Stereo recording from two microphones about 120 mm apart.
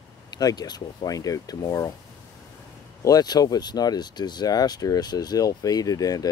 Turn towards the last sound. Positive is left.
turn(degrees=30)  # may be behind; listen again after turning